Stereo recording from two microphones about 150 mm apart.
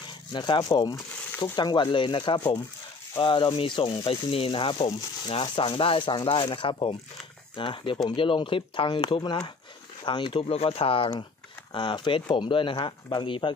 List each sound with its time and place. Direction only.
0.3 s speech: 30° left (ahead or behind)